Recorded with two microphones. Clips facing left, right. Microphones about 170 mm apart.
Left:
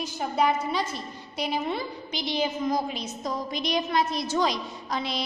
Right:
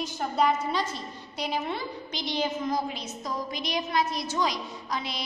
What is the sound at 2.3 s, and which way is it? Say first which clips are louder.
A woman's voice: left 2 dB; 10° left (ahead or behind).